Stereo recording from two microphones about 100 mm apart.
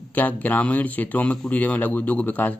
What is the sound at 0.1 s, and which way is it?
Speech, 15° left (ahead or behind).